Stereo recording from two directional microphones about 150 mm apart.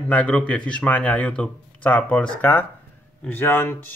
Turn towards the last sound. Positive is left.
turn(degrees=15)  # may be behind; listen again after turning